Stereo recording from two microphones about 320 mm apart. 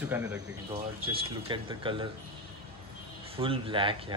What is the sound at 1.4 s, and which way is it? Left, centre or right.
Speech, centre.